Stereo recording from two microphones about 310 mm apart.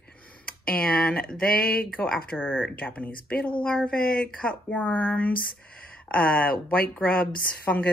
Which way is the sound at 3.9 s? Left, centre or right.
Left.